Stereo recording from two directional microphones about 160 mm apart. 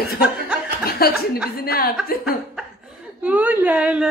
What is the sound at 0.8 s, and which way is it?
Chuckle, 70° left (ahead or behind).